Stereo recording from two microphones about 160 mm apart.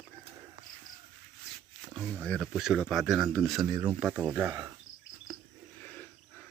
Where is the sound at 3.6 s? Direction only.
15° right (ahead or behind).